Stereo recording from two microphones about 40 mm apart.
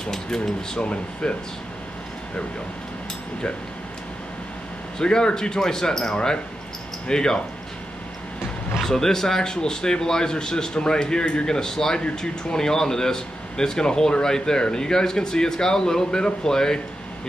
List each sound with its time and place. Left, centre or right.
0.0 s speech: centre
0.7 s speech: left
4.9 s speech: centre
8.8 s speech: centre